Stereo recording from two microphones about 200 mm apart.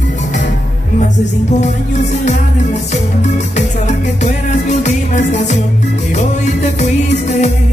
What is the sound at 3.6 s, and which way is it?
Music, 35° left (ahead or behind).